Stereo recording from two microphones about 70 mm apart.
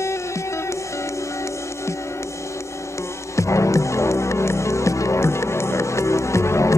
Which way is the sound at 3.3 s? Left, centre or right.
Left.